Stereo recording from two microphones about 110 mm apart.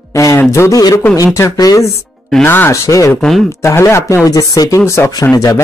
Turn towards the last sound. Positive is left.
turn(degrees=30)  # may be behind; listen again after turning